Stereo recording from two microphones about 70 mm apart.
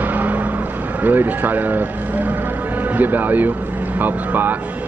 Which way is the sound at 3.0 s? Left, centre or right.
Right.